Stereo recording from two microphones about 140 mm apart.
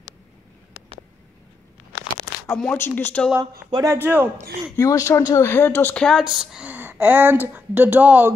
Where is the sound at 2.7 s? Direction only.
15° left (ahead or behind).